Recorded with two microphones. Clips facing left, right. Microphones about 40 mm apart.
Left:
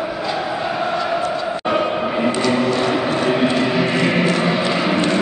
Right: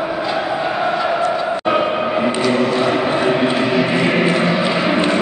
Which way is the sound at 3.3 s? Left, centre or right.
Centre.